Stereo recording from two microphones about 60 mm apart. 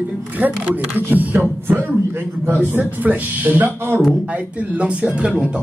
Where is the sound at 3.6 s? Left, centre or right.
Right.